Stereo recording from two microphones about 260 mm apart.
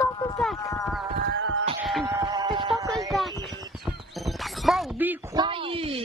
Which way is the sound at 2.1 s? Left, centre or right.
Centre.